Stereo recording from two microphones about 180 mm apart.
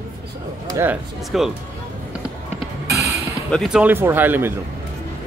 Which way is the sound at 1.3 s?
Centre (ahead or behind).